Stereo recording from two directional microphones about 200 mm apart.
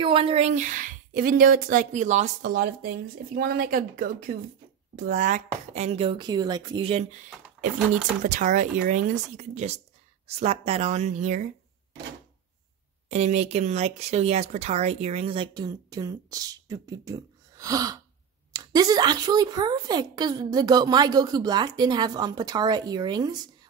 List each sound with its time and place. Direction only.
0.0 s a woman's voice: 25° right (ahead or behind)
8.2 s speech: 40° right (ahead or behind)
13.1 s speech: 35° right (ahead or behind)